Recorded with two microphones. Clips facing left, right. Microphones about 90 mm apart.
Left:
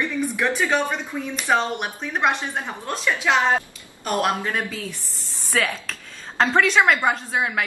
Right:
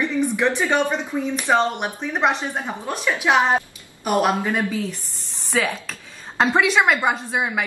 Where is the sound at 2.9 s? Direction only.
15° right (ahead or behind).